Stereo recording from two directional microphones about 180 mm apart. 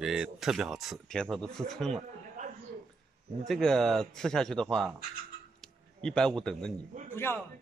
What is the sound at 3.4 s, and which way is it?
Speech, centre (ahead or behind).